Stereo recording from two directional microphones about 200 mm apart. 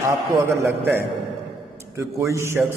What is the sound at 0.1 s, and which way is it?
Speech, 15° right (ahead or behind).